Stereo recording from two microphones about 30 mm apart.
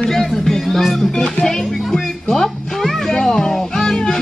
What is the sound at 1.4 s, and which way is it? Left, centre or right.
Speech, centre.